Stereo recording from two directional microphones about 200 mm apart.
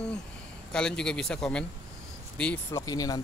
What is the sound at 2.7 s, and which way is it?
Speech, 20° left (ahead or behind).